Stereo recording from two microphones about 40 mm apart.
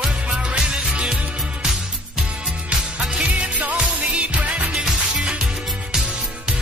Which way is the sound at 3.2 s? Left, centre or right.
Right.